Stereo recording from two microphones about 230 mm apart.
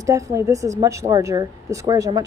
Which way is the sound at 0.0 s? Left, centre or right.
Centre.